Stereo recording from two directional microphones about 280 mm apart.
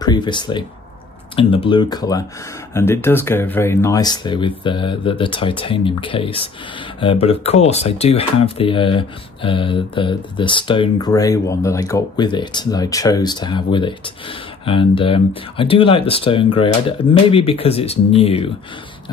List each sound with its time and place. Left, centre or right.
0.0 s speech: centre